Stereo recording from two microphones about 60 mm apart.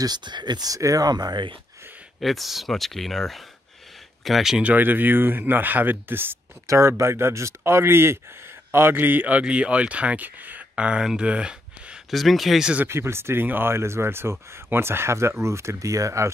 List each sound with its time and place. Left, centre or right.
0.7 s speech: right
2.2 s speech: centre
4.6 s speech: right
6.7 s speech: right
9.4 s speech: centre
10.8 s speech: centre
11.1 s a sound: centre
12.1 s speech: centre
12.8 s speech: right